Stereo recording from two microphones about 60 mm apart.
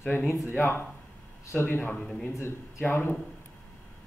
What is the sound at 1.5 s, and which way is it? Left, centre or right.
A man's voice, left.